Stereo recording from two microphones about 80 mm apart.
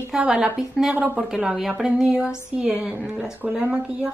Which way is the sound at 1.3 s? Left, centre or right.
Centre.